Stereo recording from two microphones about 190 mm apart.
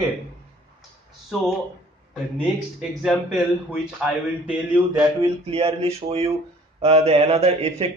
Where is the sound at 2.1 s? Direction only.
Centre (ahead or behind).